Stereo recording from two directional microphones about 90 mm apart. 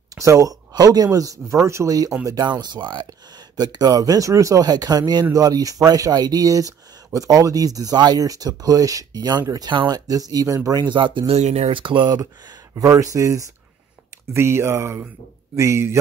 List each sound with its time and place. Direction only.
0.1 s speech: 35° right (ahead or behind)
2.4 s speech: 55° right (ahead or behind); by 10.8 s 40° right (ahead or behind)
10.8 s speech: 60° right (ahead or behind)
12.1 s speech: 40° right (ahead or behind)